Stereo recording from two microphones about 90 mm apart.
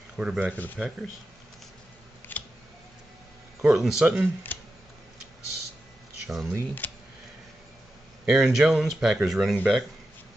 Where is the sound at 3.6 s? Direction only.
5° right (ahead or behind).